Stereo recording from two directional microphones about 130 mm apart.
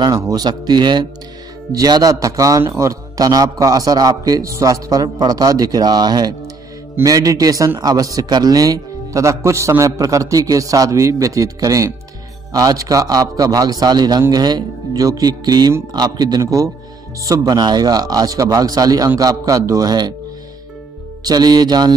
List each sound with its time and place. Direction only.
0.2 s a man's voice: 30° right (ahead or behind)
21.2 s speech: 30° right (ahead or behind)